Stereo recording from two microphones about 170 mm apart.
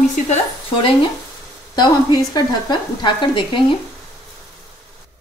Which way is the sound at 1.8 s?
25° left (ahead or behind).